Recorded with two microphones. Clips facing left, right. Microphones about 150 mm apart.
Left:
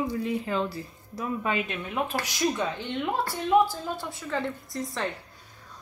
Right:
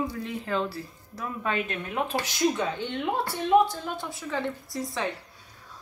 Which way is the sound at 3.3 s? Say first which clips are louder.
Right 1 dB; centre (ahead or behind).